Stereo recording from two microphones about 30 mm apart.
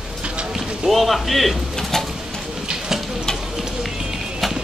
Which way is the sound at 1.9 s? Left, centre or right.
Centre.